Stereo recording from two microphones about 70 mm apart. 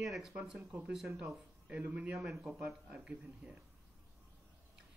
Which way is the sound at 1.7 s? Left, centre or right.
Centre.